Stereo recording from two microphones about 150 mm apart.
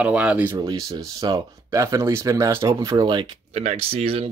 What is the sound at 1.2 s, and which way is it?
Speech, 30° right (ahead or behind).